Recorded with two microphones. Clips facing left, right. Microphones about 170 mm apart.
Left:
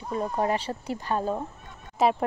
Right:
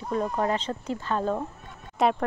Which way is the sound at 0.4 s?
10° left (ahead or behind).